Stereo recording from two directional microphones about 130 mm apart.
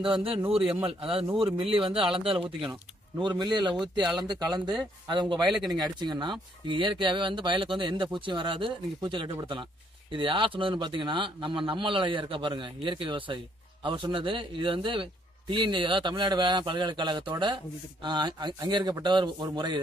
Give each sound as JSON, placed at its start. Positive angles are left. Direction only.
{"t": 0.0, "sound": "a man's voice", "side_deg": -45}
{"t": 3.2, "sound": "speech", "side_deg": -35}